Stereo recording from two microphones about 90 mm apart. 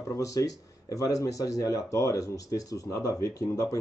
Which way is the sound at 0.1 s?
40° left (ahead or behind).